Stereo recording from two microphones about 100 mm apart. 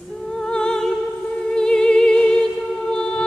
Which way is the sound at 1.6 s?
10° left (ahead or behind).